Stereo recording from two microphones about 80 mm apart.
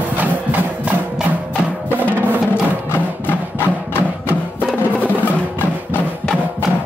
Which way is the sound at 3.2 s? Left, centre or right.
Left.